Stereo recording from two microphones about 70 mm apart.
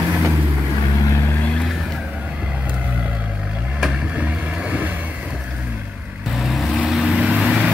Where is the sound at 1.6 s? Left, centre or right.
Centre.